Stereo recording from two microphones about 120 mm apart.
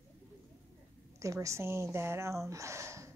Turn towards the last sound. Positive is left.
turn(degrees=-25)  # may be behind; listen again after turning